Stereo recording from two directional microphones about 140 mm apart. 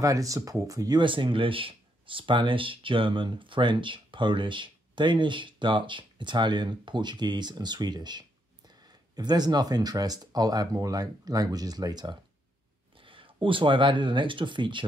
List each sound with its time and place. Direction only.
0.0 s speech: 25° right (ahead or behind)